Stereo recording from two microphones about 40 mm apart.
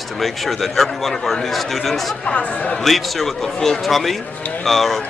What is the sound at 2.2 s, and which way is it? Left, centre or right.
Speech, left.